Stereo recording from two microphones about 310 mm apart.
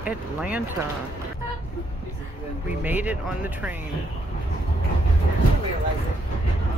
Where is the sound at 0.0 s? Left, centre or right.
Centre.